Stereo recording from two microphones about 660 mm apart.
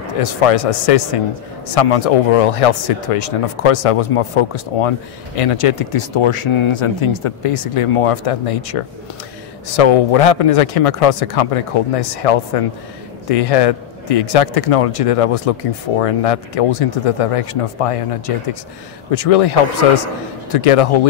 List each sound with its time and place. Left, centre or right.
0.2 s speech: left